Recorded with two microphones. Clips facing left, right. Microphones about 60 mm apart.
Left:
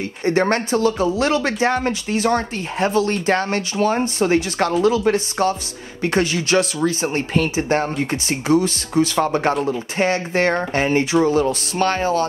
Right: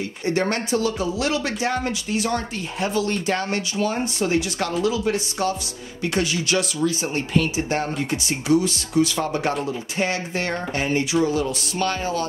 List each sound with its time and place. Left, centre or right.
0.2 s speech: left